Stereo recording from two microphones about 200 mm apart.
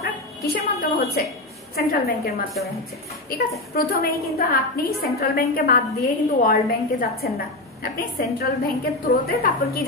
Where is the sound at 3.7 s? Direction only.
50° left (ahead or behind).